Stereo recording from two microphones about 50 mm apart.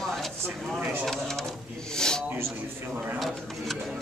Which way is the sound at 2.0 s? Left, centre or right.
Centre.